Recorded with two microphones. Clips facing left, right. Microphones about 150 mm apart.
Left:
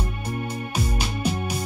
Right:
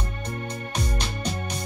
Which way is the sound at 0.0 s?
10° left (ahead or behind).